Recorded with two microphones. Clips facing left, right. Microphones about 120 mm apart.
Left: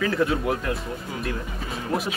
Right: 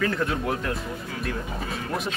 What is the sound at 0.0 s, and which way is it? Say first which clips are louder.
Speech: left 3 dB; centre (ahead or behind).